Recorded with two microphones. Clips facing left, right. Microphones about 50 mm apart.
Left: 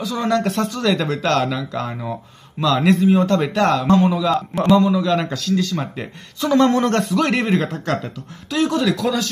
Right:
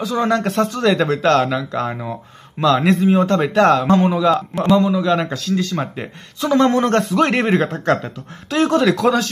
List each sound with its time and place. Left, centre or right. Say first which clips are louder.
0.0 s speech: right 2 dB; right
1.3 s speech: right 3 dB; centre
4.6 s a man's voice: even; centre; by 7.9 s right
8.5 s speech: right 3 dB; right